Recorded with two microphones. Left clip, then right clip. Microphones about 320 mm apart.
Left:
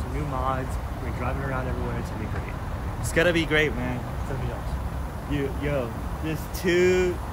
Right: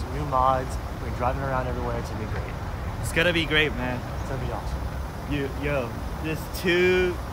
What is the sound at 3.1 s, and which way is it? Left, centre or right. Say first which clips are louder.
Speech: even; centre.